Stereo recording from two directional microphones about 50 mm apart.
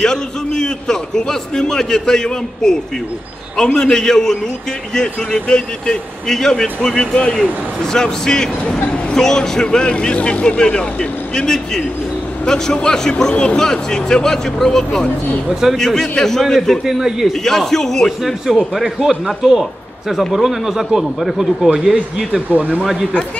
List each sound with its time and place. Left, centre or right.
0.0 s a man's voice: centre
16.8 s a man's voice: centre
17.4 s a man's voice: centre
18.7 s a man's voice: centre
22.5 s speech: right